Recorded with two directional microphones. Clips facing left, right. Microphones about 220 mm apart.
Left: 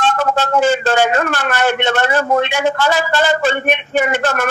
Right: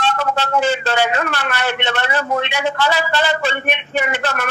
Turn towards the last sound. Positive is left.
turn(degrees=45)  # may be behind; listen again after turning